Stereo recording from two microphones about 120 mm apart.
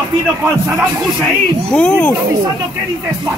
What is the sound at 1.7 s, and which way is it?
Speech, 10° left (ahead or behind).